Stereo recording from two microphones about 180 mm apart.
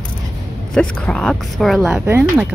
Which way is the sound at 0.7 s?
5° left (ahead or behind).